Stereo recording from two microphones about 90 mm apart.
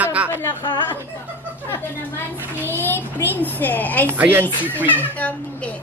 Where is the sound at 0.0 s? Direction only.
15° right (ahead or behind).